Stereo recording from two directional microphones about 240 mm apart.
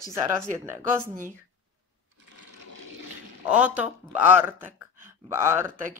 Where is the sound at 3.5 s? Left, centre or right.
Centre.